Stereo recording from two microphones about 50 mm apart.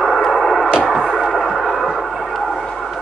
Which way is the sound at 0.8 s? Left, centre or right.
Centre.